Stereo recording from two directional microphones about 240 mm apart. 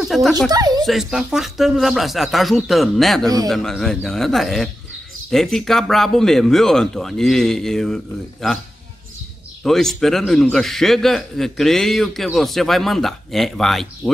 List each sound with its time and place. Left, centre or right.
0.0 s speech: centre
0.5 s speech: centre
0.8 s a man's voice: centre
9.6 s a man's voice: centre